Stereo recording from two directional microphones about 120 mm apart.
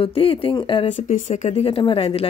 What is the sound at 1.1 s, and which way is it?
Speech, 90° left.